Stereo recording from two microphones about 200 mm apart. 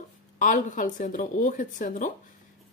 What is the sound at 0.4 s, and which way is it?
Speech, 40° left (ahead or behind).